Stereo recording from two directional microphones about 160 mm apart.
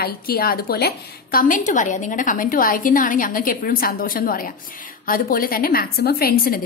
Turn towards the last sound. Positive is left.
turn(degrees=70)  # may be behind; listen again after turning